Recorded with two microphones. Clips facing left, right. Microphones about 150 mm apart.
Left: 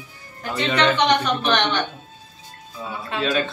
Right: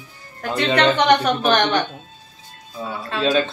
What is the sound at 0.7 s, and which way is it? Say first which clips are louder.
A woman's voice: right 3 dB; 50° right (ahead or behind).